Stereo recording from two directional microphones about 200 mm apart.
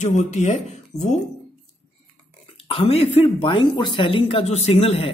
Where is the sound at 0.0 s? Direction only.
35° left (ahead or behind).